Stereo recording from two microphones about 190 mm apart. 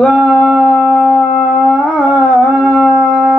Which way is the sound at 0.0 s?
5° left (ahead or behind).